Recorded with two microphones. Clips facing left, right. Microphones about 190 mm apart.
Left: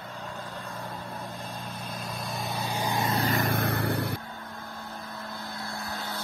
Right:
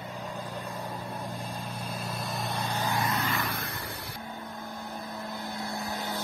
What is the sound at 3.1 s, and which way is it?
Vehicle, 40° left (ahead or behind).